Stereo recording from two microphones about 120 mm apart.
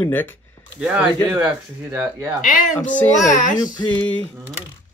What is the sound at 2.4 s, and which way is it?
Speech, 90° left.